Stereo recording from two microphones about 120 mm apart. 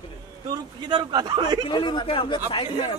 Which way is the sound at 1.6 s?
45° left (ahead or behind).